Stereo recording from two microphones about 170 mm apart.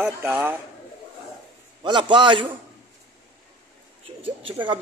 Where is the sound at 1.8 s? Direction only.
30° right (ahead or behind).